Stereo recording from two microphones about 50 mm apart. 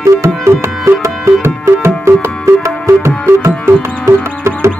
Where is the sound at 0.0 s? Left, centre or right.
Right.